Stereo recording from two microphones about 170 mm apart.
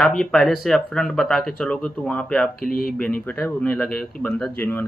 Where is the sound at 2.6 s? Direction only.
55° left (ahead or behind).